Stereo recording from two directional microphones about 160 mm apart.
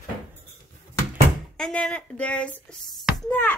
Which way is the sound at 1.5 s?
5° left (ahead or behind).